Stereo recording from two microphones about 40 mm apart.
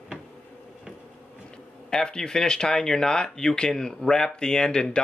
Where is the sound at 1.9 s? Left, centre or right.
Centre.